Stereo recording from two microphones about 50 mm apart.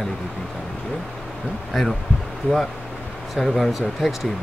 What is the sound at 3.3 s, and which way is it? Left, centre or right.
Speech, centre.